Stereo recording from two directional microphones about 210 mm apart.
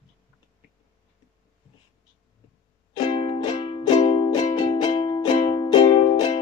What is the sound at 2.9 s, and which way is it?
Music, 20° left (ahead or behind).